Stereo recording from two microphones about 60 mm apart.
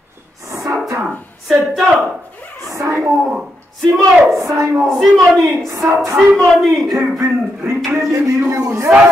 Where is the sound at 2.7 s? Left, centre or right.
Right.